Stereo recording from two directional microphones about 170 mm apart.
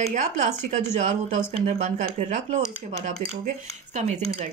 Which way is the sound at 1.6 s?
45° right (ahead or behind).